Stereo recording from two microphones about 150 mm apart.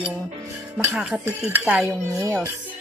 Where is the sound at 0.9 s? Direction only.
5° right (ahead or behind).